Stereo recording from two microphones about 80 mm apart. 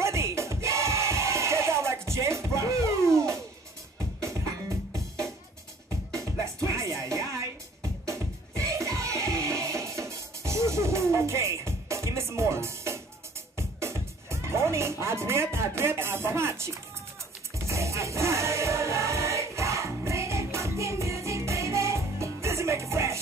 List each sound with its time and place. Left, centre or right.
0.0 s a sound: right
4.2 s music: right
5.9 s music: right